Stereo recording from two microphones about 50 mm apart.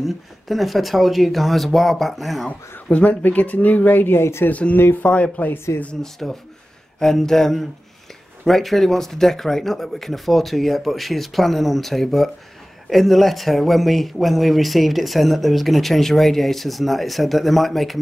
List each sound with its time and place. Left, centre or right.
0.0 s speech: centre
2.9 s speech: left
4.2 s a woman's voice: left
4.5 s speech: left
5.7 s speech: left
6.2 s speech: centre